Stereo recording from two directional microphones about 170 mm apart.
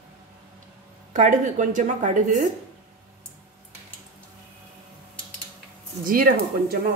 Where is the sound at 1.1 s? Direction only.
45° right (ahead or behind).